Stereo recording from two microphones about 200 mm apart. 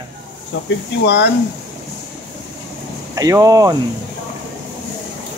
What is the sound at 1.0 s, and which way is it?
Speech, 60° left (ahead or behind).